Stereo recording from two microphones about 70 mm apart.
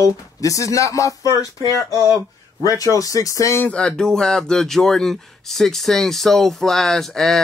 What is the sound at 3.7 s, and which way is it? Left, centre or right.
Speech, centre.